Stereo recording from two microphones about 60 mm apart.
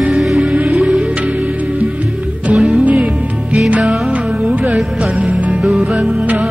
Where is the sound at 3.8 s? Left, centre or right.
Centre.